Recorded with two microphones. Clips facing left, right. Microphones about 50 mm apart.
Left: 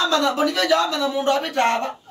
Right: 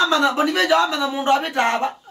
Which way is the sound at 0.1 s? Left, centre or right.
Right.